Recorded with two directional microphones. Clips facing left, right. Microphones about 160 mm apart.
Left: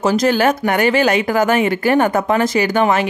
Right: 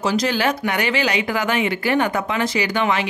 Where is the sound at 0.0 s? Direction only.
45° left (ahead or behind).